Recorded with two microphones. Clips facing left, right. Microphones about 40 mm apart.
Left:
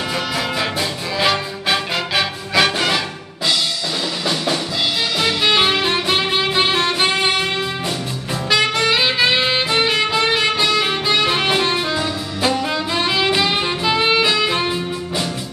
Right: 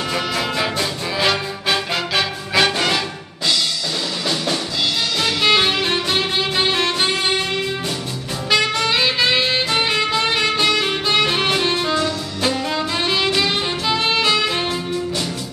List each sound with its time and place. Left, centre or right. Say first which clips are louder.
0.1 s music: right 1 dB; centre
5.2 s music: even; centre
8.5 s music: left 1 dB; centre
11.1 s saxophone: even; centre
12.6 s music: left 1 dB; centre
13.3 s saxophone: left 2 dB; centre
14.5 s music: left 1 dB; centre